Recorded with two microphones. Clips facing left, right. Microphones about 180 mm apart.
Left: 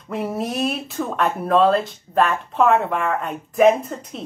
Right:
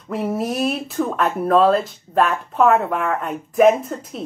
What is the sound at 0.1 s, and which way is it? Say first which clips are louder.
A woman's voice: right 2 dB; centre (ahead or behind).